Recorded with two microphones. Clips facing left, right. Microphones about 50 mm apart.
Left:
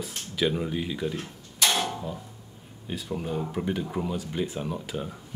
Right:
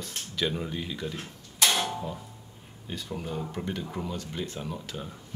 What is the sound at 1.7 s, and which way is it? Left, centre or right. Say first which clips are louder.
Music: left 2 dB; centre.